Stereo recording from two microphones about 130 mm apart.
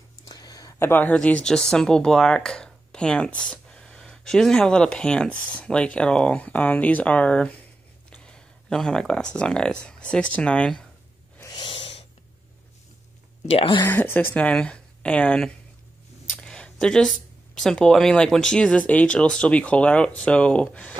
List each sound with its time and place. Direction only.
0.3 s a sound: 30° left (ahead or behind)
0.8 s speech: 15° left (ahead or behind)
11.4 s owl: 35° left (ahead or behind)
13.5 s speech: 40° left (ahead or behind)
13.8 s a woman's voice: 25° left (ahead or behind)
14.1 s speech: 10° left (ahead or behind)